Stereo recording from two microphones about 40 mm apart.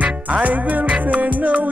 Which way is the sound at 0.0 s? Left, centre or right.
Right.